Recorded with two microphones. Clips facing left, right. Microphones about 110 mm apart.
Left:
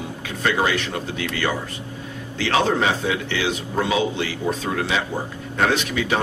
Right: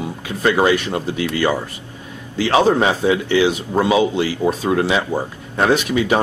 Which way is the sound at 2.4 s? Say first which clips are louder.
Right 5 dB; 15° right (ahead or behind).